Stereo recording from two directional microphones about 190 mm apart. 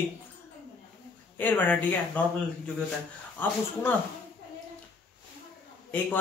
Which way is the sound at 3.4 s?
10° left (ahead or behind).